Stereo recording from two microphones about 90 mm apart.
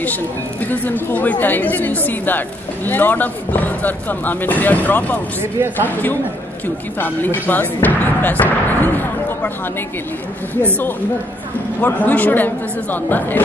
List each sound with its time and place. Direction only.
0.0 s a woman's voice: 20° left (ahead or behind)
5.4 s speech: 25° right (ahead or behind)
7.0 s speech: 20° left (ahead or behind)
11.8 s a woman's voice: 20° left (ahead or behind)